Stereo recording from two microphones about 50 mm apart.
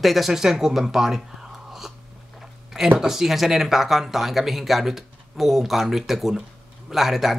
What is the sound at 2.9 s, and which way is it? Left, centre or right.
Speech, centre.